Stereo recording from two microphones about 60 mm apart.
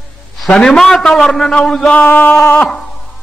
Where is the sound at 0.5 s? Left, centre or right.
Centre.